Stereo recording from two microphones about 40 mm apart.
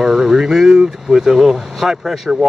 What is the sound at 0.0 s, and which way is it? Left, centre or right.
Speech, centre.